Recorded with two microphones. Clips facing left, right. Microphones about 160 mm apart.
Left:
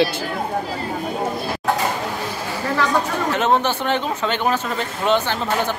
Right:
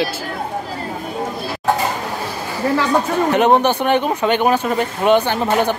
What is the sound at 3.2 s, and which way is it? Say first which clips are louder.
Speech: right 6 dB; 15° right (ahead or behind).